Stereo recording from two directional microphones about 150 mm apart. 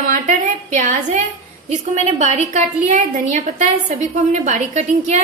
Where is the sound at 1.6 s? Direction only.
50° right (ahead or behind).